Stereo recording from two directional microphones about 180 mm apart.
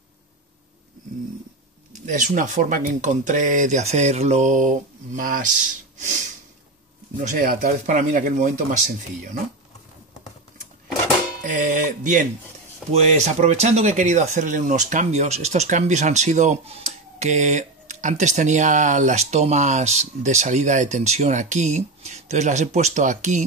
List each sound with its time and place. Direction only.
2.0 s speech: 45° right (ahead or behind)
11.4 s music: 45° right (ahead or behind)
12.9 s speech: 40° right (ahead or behind)